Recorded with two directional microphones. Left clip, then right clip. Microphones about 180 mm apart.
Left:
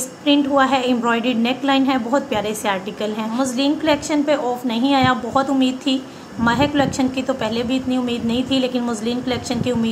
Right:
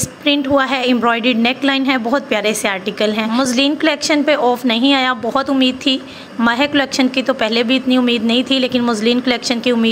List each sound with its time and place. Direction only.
0.3 s a woman's voice: 20° right (ahead or behind)